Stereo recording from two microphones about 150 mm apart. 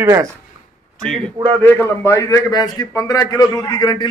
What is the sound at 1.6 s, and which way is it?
A man's voice, 15° left (ahead or behind).